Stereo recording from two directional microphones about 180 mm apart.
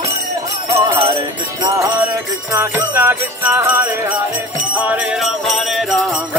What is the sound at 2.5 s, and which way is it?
Jingle bell, 10° right (ahead or behind).